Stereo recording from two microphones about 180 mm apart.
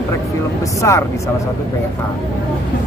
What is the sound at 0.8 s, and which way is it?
Speech, 15° left (ahead or behind).